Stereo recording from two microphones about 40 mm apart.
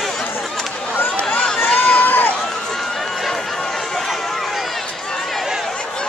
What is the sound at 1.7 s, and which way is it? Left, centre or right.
Run, left.